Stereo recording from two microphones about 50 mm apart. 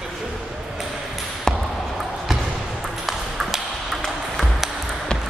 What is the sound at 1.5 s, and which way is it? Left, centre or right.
Basketball bounce, centre.